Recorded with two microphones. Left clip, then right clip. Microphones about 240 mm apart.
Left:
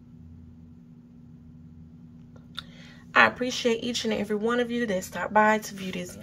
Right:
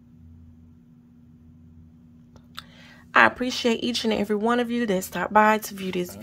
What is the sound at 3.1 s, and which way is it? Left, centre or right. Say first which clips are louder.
Speech: right 2 dB; right.